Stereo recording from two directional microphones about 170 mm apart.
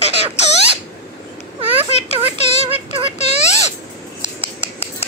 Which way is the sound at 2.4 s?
40° left (ahead or behind).